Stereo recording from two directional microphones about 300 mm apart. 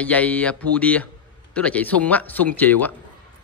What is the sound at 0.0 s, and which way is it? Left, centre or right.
A man's voice, centre.